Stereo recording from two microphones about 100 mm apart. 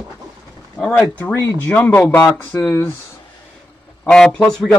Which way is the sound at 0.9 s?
25° left (ahead or behind).